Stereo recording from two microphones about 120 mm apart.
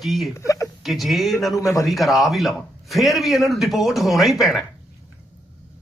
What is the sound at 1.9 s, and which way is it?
Speech, centre (ahead or behind).